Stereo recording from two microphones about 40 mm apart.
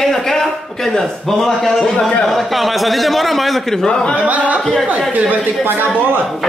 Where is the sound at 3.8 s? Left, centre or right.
Left.